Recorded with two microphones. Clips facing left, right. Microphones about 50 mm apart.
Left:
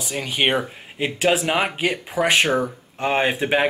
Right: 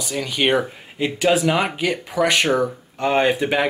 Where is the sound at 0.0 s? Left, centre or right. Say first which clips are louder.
Right 1 dB; left.